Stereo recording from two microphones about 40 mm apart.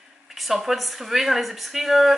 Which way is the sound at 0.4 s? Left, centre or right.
Centre.